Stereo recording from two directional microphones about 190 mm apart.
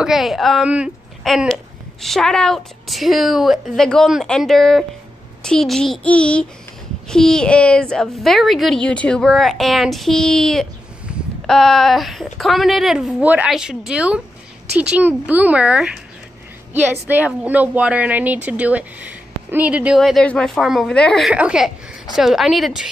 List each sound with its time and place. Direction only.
0.0 s a woman's voice: centre (ahead or behind)
11.1 s a sound: 5° right (ahead or behind)
11.4 s a woman's voice: centre (ahead or behind)
17.1 s a woman's voice: 10° right (ahead or behind)